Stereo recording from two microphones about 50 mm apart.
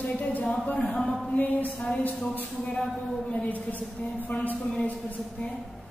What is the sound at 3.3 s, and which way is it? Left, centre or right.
Speech, left.